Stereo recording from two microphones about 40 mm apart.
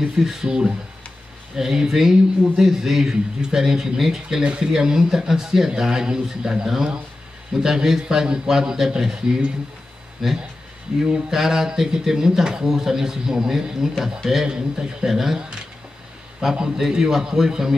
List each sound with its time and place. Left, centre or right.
0.2 s speech: centre
4.4 s speech: right
4.7 s speech: centre
15.0 s speech: centre